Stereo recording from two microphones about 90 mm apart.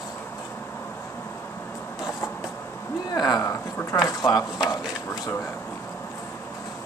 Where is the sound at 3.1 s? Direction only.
45° left (ahead or behind).